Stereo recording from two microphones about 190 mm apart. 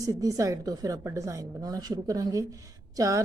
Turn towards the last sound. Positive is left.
turn(degrees=-20)  # may be behind; listen again after turning